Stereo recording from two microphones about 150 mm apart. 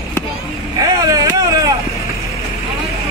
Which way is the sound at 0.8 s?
25° right (ahead or behind).